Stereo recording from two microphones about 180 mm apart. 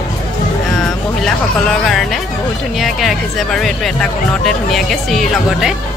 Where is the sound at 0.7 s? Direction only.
Centre (ahead or behind).